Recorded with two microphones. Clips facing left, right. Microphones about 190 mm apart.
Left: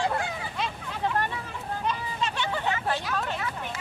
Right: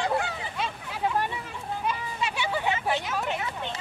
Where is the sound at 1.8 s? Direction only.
10° right (ahead or behind).